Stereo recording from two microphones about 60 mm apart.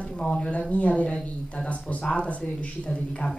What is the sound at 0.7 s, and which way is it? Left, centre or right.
Speech, left.